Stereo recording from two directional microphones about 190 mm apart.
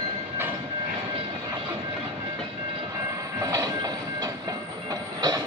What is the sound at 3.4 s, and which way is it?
Train, 15° right (ahead or behind).